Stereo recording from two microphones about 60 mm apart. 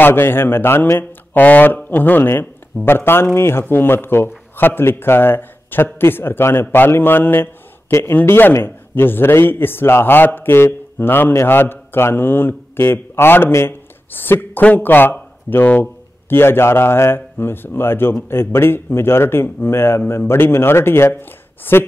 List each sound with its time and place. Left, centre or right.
0.0 s a man's voice: left